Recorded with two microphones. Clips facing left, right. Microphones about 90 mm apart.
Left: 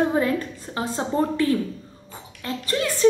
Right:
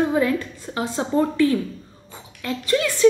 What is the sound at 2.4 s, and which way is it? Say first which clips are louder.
Speech: right 4 dB; 35° left (ahead or behind).